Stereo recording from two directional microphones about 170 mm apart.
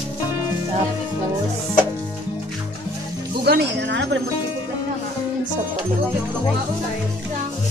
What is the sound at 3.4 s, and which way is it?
Music, 75° right (ahead or behind).